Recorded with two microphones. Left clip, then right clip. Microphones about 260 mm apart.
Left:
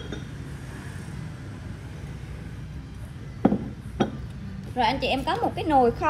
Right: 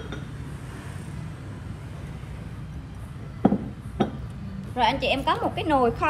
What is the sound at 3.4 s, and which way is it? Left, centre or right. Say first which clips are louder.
Music: even; centre.